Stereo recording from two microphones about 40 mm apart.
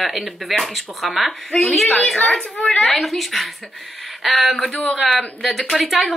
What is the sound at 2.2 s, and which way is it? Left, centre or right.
Speech, centre.